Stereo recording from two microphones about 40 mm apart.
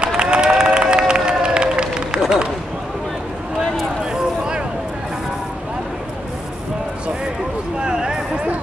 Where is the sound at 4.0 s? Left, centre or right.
Right.